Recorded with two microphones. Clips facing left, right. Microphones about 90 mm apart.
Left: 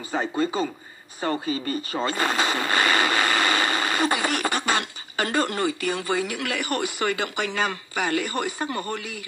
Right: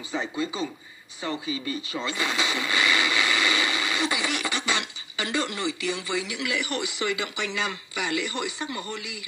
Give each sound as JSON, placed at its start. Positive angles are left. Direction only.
{"t": 0.1, "sound": "speech", "side_deg": 45}